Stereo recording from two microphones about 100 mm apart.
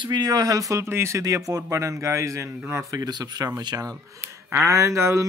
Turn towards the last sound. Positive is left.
turn(degrees=-30)  # may be behind; listen again after turning